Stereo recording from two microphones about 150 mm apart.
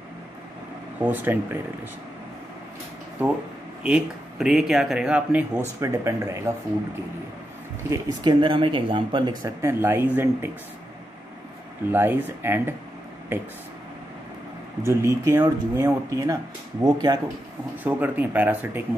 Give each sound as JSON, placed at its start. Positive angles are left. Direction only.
{"t": 0.9, "sound": "speech", "side_deg": -10}
{"t": 3.2, "sound": "speech", "side_deg": -10}
{"t": 5.8, "sound": "speech", "side_deg": -20}
{"t": 7.9, "sound": "speech", "side_deg": -30}
{"t": 11.9, "sound": "speech", "side_deg": -15}
{"t": 14.9, "sound": "speech", "side_deg": -20}
{"t": 17.8, "sound": "speech", "side_deg": -10}